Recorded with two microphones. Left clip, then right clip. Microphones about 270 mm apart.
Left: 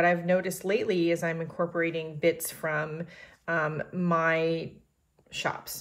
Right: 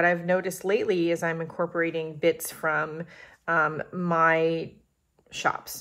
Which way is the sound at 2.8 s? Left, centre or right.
Centre.